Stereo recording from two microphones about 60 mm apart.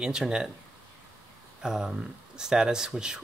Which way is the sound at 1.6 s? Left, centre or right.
Centre.